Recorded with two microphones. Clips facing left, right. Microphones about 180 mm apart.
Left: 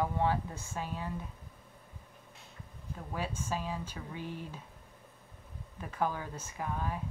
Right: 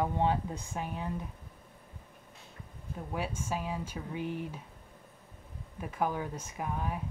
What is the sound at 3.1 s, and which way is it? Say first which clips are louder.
Speech: right 1 dB; 10° right (ahead or behind).